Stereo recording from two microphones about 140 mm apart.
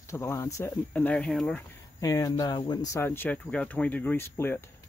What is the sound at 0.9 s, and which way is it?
Speech, 10° left (ahead or behind).